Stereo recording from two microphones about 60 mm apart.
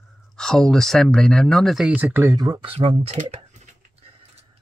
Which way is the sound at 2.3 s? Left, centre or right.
Right.